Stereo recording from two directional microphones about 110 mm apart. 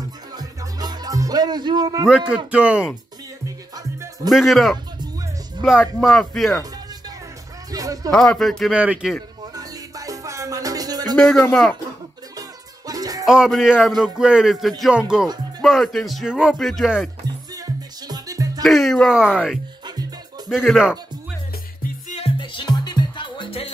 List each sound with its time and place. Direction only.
0.4 s music: 40° right (ahead or behind)
2.0 s speech: 10° right (ahead or behind)
3.4 s music: 30° right (ahead or behind)
4.3 s speech: centre (ahead or behind)
7.7 s music: 35° right (ahead or behind)
8.1 s speech: 5° left (ahead or behind)
8.7 s speech: 10° right (ahead or behind)
9.6 s music: 30° right (ahead or behind)
11.1 s speech: 5° left (ahead or behind)
12.4 s music: 35° right (ahead or behind)
13.2 s speech: 5° right (ahead or behind)
17.6 s music: 35° right (ahead or behind)
18.6 s speech: centre (ahead or behind)
22.4 s music: 45° left (ahead or behind)